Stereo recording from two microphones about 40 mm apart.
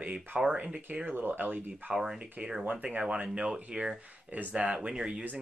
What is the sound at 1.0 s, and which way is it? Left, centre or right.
Speech, right.